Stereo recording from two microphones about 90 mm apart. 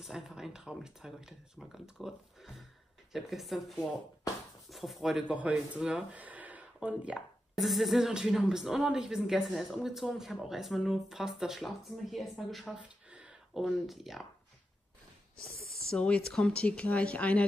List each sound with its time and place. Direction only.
0.0 s speech: 5° right (ahead or behind)
7.2 s speech: centre (ahead or behind)
12.7 s speech: 10° right (ahead or behind)
15.9 s speech: 10° left (ahead or behind)